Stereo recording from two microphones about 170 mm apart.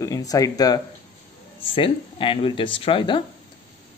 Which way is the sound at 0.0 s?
20° left (ahead or behind).